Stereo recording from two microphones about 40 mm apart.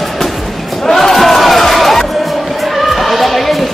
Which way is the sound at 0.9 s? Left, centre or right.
Centre.